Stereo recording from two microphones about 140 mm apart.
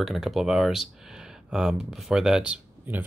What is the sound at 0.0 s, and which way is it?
Speech, centre (ahead or behind).